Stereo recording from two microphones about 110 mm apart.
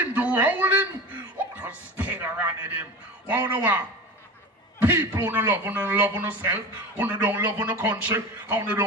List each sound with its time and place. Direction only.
0.0 s a man's voice: 15° right (ahead or behind)
4.8 s a man's voice: 20° right (ahead or behind)